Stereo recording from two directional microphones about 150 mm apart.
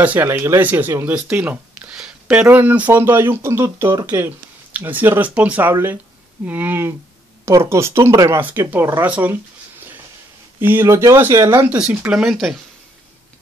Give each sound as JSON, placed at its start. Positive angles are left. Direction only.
{"t": 0.0, "sound": "speech", "side_deg": -10}
{"t": 10.6, "sound": "speech", "side_deg": -15}